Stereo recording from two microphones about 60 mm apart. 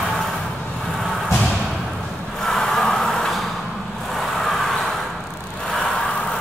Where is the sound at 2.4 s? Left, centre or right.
Centre.